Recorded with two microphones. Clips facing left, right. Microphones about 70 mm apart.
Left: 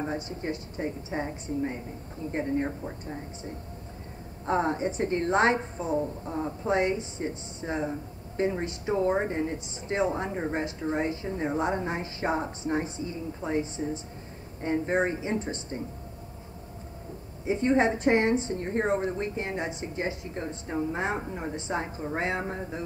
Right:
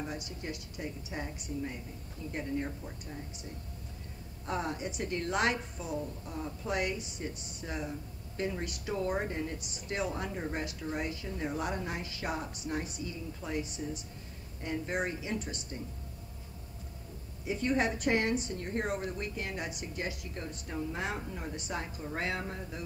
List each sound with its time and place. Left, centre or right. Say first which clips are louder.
0.0 s a woman's voice: left 7 dB; left
17.5 s a woman's voice: left 7 dB; left